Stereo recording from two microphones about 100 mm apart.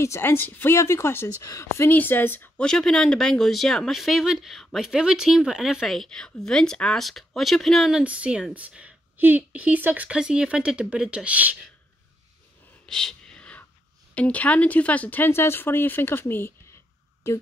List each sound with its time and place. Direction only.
0.0 s a woman's voice: 25° left (ahead or behind)
2.6 s speech: 5° left (ahead or behind)
8.0 s speech: 10° right (ahead or behind)
12.8 s whispering: 5° left (ahead or behind)
14.1 s a woman's voice: 15° left (ahead or behind)